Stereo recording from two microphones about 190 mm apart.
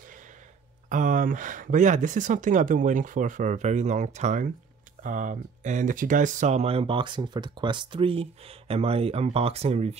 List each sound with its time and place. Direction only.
0.8 s speech: 45° right (ahead or behind)